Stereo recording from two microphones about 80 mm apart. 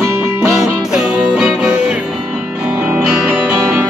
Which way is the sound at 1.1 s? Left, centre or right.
Centre.